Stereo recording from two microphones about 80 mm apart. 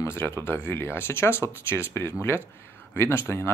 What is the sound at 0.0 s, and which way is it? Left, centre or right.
Speech, left.